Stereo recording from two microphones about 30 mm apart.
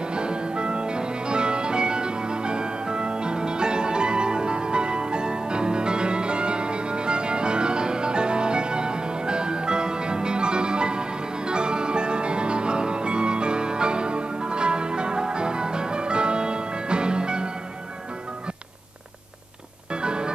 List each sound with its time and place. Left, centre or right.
0.1 s music: right
19.9 s music: right